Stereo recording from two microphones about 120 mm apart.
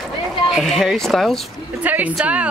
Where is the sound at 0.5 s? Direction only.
Centre (ahead or behind).